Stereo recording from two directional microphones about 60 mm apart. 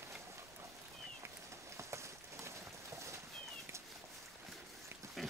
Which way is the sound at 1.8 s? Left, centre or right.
Right.